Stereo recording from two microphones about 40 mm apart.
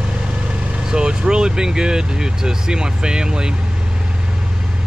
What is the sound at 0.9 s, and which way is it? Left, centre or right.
Speech, centre.